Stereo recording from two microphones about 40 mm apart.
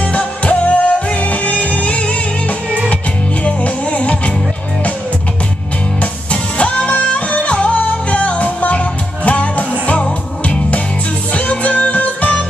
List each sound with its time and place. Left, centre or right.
0.0 s music: left
3.4 s music: left
6.6 s music: left